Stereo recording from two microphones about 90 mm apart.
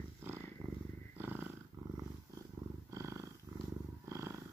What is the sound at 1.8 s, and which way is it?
Purr, 45° right (ahead or behind).